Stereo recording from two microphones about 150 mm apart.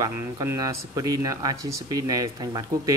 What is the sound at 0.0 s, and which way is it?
Speech, 20° right (ahead or behind).